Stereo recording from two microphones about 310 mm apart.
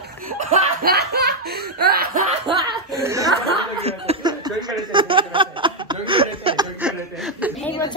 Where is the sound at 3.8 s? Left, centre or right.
Centre.